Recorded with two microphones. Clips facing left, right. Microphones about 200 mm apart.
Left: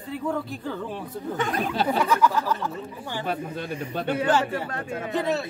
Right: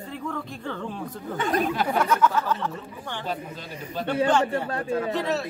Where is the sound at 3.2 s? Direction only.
60° left (ahead or behind).